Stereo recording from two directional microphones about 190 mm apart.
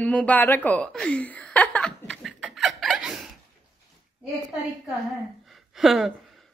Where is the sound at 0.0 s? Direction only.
5° left (ahead or behind).